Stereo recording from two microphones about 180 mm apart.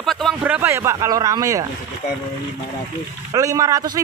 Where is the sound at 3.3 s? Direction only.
20° right (ahead or behind).